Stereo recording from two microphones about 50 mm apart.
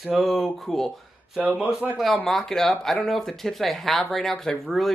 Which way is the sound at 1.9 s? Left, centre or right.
Centre.